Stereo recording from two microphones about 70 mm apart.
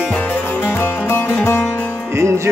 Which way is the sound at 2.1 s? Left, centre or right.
Right.